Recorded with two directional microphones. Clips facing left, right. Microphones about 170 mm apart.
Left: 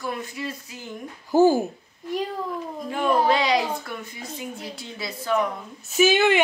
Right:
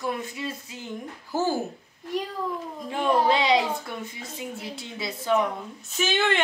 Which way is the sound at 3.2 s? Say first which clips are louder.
Even; 25° right (ahead or behind).